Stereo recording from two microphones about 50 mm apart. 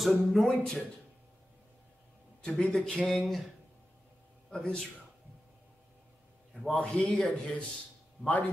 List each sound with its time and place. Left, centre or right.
0.0 s speech: centre
2.4 s speech: centre
3.1 s speech: centre
4.5 s a man's voice: centre
6.7 s speech: centre